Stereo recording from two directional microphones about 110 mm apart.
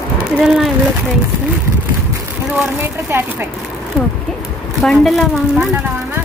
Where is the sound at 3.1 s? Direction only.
20° right (ahead or behind).